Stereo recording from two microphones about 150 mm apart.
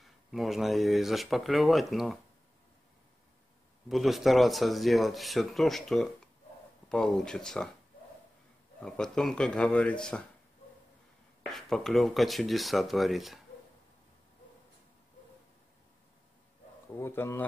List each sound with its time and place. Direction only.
0.0 s speech: centre (ahead or behind)
3.9 s speech: centre (ahead or behind)
8.8 s speech: 5° left (ahead or behind)
11.5 s speech: centre (ahead or behind)
16.9 s speech: 15° left (ahead or behind)